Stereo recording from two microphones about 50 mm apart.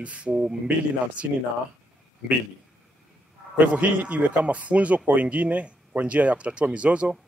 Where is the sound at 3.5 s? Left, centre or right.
Right.